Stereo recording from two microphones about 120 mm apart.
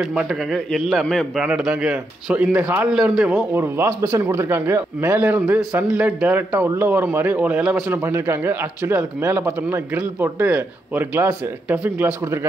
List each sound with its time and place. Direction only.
0.1 s speech: 10° right (ahead or behind)
0.7 s a man's voice: centre (ahead or behind)
3.5 s speech: 20° right (ahead or behind)